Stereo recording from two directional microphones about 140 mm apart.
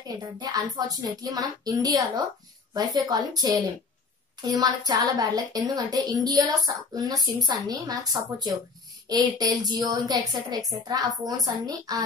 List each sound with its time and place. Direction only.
0.4 s a woman's voice: 30° right (ahead or behind)